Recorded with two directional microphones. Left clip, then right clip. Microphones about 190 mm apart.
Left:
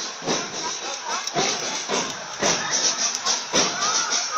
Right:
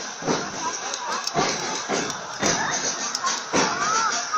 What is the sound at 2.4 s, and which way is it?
Music, 50° left (ahead or behind).